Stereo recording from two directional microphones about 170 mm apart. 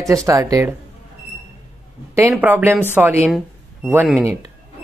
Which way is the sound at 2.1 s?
15° right (ahead or behind).